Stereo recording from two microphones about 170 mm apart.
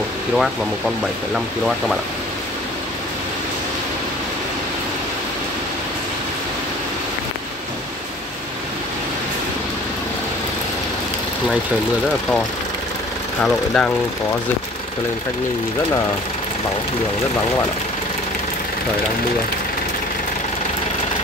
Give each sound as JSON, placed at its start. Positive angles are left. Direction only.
{"t": 0.4, "sound": "speech", "side_deg": 0}
{"t": 13.4, "sound": "speech", "side_deg": 5}